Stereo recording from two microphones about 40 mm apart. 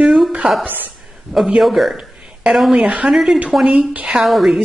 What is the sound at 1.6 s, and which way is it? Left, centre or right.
Speech, centre.